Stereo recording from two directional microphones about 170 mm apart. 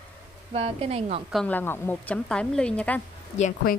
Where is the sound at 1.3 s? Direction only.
10° left (ahead or behind).